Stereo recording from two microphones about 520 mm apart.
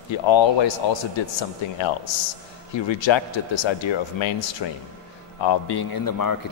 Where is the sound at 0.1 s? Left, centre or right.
Left.